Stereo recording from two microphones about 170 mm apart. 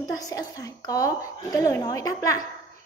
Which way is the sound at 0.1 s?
20° left (ahead or behind).